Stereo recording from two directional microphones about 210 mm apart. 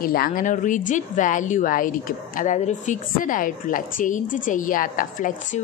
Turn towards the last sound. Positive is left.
turn(degrees=40)  # may be behind; listen again after turning